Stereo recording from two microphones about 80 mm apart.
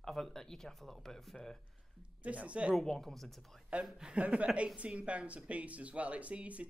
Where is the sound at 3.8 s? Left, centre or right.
Centre.